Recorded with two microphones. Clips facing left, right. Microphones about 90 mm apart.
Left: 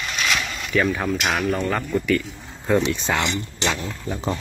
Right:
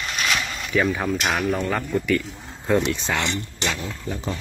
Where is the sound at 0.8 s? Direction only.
5° right (ahead or behind).